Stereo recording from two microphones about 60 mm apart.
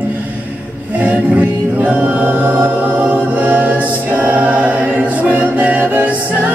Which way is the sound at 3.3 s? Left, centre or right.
Right.